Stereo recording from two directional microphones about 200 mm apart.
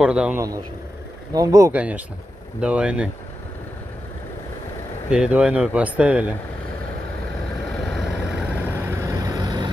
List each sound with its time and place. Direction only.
0.0 s speech: 5° right (ahead or behind)
1.3 s speech: 15° right (ahead or behind)
5.1 s speech: 5° right (ahead or behind)
7.8 s vehicle: centre (ahead or behind)
8.6 s vehicle: 10° right (ahead or behind)